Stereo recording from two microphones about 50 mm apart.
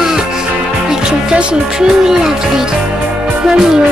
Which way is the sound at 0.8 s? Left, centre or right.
Centre.